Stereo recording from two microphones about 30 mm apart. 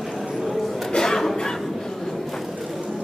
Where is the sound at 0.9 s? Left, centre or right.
Left.